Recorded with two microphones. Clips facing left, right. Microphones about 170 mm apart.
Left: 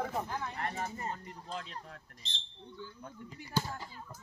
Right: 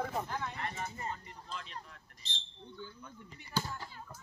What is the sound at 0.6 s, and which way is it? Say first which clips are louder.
Speech: left 3 dB; 45° left (ahead or behind).